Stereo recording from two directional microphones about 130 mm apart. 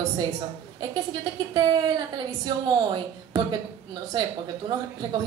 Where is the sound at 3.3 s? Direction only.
35° right (ahead or behind).